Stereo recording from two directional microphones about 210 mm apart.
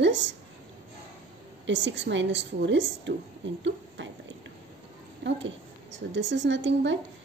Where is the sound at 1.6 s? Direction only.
60° right (ahead or behind).